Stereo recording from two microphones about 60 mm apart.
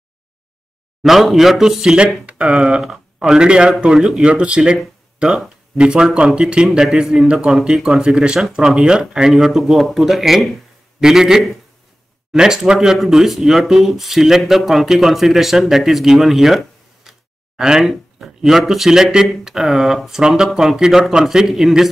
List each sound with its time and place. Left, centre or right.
1.0 s speech: centre
5.8 s speech: centre